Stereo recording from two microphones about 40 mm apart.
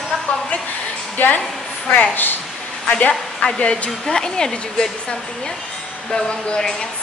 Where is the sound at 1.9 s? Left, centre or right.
Left.